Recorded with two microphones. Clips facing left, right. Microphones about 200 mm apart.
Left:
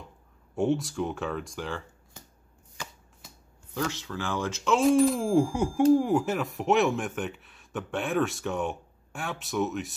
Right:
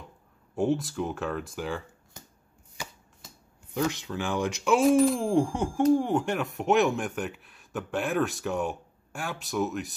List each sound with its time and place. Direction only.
0.6 s speech: centre (ahead or behind)
3.7 s speech: 15° right (ahead or behind)
4.8 s speech: centre (ahead or behind)